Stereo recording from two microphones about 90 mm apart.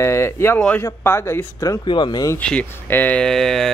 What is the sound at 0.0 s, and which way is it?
Speech, 30° left (ahead or behind).